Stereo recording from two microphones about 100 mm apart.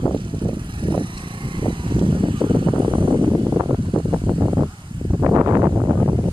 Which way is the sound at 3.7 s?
55° right (ahead or behind).